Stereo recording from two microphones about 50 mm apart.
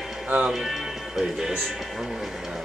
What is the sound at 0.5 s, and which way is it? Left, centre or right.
Speech, centre.